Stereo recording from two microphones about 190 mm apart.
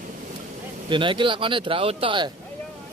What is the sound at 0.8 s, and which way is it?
Speech, 25° right (ahead or behind).